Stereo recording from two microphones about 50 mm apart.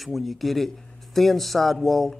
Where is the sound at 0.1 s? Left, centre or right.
Centre.